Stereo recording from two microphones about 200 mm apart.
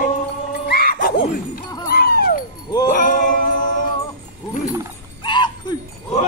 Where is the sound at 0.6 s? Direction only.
50° left (ahead or behind).